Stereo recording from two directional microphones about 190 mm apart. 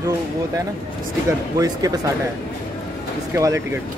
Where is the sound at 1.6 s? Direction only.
20° right (ahead or behind).